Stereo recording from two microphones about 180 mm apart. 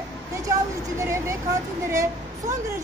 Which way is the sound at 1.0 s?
15° right (ahead or behind).